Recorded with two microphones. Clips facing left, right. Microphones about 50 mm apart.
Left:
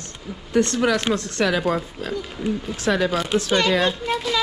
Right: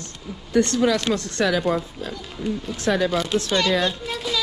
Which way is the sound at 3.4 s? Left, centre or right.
Left.